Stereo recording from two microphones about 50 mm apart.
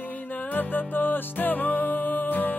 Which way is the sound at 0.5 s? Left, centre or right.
Left.